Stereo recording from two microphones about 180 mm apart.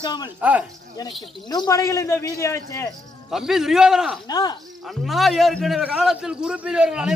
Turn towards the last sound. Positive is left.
turn(degrees=-5)  # may be behind; listen again after turning